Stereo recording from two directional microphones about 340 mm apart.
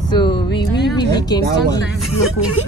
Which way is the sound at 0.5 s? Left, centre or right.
Left.